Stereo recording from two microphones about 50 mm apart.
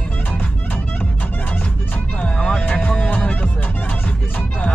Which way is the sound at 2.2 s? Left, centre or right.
Centre.